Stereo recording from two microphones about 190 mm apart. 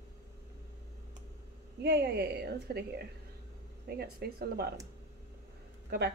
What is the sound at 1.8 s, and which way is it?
A woman's voice, 60° right (ahead or behind).